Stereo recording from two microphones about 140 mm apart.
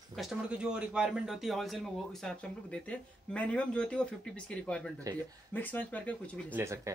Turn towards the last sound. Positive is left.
turn(degrees=-20)  # may be behind; listen again after turning